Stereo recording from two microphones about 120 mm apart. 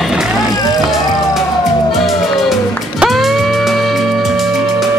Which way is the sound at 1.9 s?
Centre (ahead or behind).